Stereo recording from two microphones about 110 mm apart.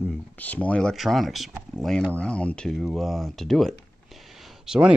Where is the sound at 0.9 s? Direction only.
Centre (ahead or behind).